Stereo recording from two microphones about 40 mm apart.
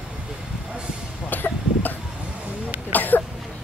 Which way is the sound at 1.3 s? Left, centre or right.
Left.